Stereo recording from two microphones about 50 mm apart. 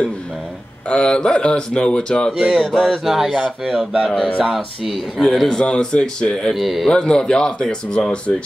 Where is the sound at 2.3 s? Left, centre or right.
Centre.